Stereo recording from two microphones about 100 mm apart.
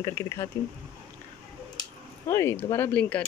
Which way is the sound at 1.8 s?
30° left (ahead or behind).